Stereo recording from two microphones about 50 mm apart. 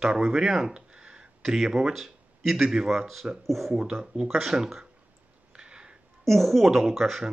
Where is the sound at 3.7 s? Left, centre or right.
Centre.